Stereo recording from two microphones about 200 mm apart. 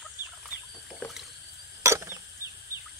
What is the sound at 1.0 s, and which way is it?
Rowboat, 10° left (ahead or behind).